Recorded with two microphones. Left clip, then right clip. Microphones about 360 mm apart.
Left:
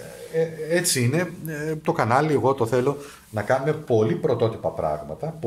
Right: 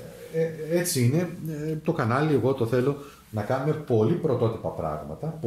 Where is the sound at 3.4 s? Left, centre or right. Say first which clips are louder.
Left 5 dB; left.